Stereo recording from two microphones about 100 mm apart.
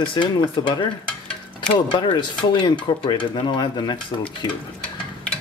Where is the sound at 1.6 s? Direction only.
50° left (ahead or behind).